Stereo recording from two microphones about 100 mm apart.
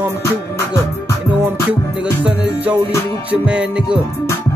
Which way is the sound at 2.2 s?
15° right (ahead or behind).